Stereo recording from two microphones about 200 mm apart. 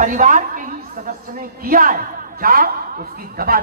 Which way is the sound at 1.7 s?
45° right (ahead or behind).